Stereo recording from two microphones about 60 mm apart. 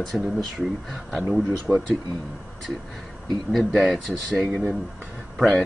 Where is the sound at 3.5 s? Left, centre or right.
Centre.